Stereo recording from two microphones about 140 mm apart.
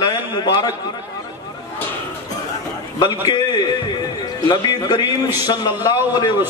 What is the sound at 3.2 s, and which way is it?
A man's voice, 30° left (ahead or behind).